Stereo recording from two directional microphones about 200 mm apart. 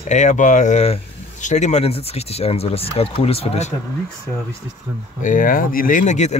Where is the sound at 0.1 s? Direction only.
35° left (ahead or behind).